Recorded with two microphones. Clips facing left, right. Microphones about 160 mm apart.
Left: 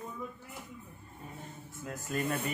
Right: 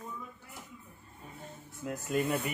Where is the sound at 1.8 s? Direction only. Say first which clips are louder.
Right 3 dB; 20° right (ahead or behind).